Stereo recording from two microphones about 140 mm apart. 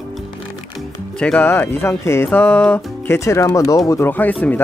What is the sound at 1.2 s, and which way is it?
Speech, 10° left (ahead or behind).